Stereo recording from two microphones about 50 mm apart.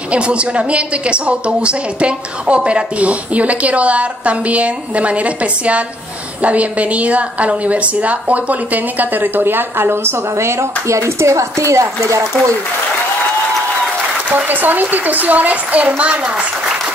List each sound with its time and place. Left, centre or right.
0.1 s a woman's voice: right
10.3 s speech: right
14.3 s a woman's voice: right